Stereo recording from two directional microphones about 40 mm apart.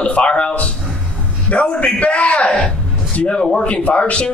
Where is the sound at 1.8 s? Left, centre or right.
Left.